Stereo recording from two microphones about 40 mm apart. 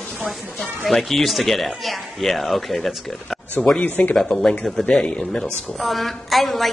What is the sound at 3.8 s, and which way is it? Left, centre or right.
Speech, left.